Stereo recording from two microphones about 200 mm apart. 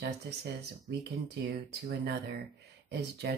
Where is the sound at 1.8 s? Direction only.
55° right (ahead or behind).